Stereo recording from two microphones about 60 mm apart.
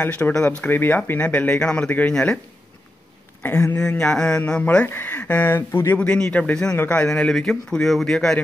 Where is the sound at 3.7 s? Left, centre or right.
Centre.